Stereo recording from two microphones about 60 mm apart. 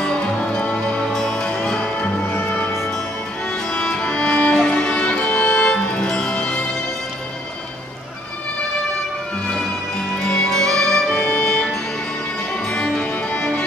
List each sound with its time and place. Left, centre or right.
0.0 s music: centre
3.7 s music: centre
9.5 s music: centre